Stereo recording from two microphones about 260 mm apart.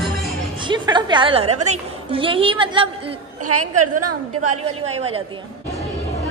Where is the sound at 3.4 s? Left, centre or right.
Right.